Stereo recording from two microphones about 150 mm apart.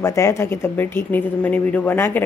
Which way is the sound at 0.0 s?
20° left (ahead or behind).